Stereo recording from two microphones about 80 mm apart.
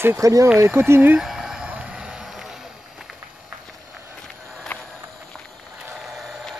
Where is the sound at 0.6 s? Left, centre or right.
Right.